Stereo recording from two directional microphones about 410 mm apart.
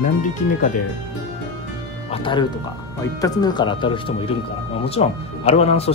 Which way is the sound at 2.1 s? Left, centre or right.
Centre.